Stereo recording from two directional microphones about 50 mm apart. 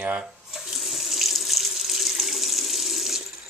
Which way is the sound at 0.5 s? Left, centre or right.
Centre.